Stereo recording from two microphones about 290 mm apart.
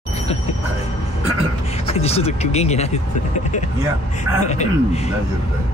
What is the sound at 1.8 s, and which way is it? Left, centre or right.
Speech, left.